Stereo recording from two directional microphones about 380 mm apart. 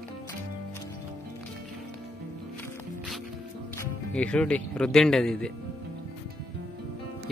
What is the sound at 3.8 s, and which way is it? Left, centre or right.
Speech, centre.